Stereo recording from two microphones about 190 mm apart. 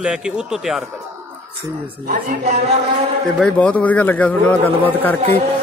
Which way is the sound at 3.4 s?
5° left (ahead or behind).